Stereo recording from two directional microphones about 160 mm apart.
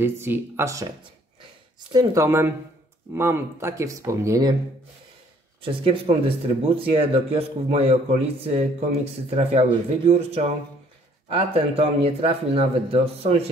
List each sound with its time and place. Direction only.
0.0 s speech: 15° right (ahead or behind)
1.9 s speech: 20° right (ahead or behind)
5.6 s speech: 35° right (ahead or behind)